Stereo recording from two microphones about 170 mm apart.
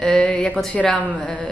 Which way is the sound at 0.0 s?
5° left (ahead or behind).